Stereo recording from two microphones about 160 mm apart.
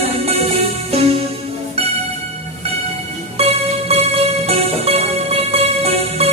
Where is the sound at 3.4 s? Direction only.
40° right (ahead or behind).